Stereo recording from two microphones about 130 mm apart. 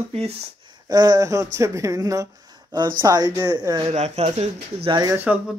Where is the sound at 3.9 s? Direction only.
60° right (ahead or behind).